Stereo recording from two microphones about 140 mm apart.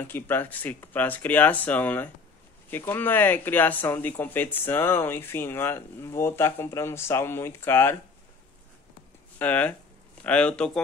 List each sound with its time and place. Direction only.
0.0 s speech: 15° left (ahead or behind)
9.4 s speech: 10° left (ahead or behind)